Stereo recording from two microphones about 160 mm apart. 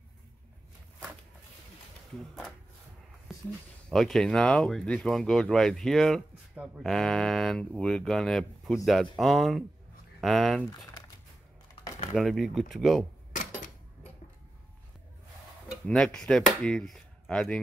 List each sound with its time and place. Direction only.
2.1 s speech: centre (ahead or behind)
3.9 s speech: centre (ahead or behind)
11.7 s typing: 35° left (ahead or behind)
12.2 s speech: centre (ahead or behind)
15.7 s chop: 5° left (ahead or behind)